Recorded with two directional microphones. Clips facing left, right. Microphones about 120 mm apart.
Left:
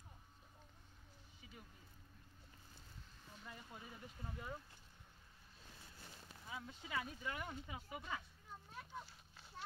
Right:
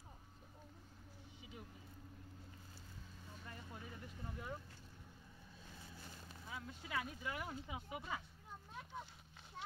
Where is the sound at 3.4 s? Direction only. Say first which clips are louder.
Right 1 dB; centre (ahead or behind).